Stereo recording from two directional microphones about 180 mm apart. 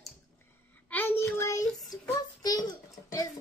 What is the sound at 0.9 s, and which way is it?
A child's voice, 10° left (ahead or behind).